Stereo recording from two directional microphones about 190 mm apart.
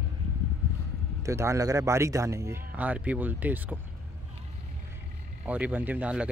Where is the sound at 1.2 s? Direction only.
15° right (ahead or behind).